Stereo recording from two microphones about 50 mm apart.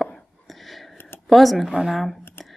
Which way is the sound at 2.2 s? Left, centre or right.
Left.